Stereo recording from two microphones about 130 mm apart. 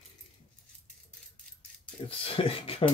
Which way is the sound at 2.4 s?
45° left (ahead or behind).